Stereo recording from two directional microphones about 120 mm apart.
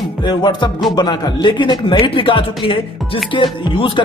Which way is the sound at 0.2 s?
40° left (ahead or behind).